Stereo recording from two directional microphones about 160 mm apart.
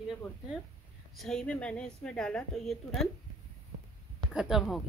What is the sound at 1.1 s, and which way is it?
A woman's voice, 5° left (ahead or behind).